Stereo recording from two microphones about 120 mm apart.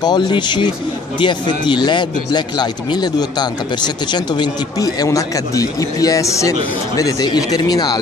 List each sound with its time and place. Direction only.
0.0 s speech: 40° left (ahead or behind)